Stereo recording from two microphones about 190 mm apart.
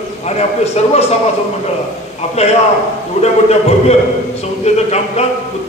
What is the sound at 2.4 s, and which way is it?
A man's voice, 35° left (ahead or behind).